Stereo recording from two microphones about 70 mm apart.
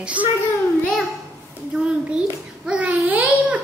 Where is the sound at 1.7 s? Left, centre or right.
Centre.